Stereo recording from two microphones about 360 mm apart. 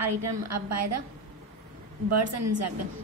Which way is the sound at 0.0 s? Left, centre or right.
Right.